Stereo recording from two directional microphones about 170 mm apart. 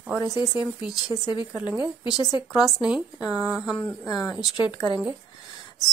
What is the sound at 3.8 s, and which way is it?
Speech, 10° left (ahead or behind).